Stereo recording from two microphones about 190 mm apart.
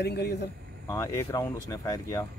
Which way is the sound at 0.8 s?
15° left (ahead or behind).